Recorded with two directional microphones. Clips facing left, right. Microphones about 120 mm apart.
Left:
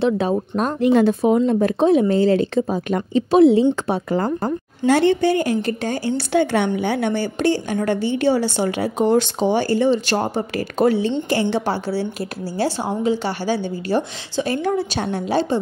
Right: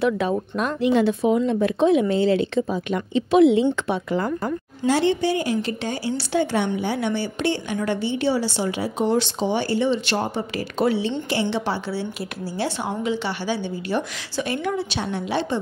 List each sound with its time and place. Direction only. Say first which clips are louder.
0.0 s speech: left 3 dB; 35° left (ahead or behind)
0.7 s speech: left 4 dB; 45° left (ahead or behind)
4.8 s a woman's voice: left 4 dB; 55° left (ahead or behind); by 15.6 s 40° left (ahead or behind)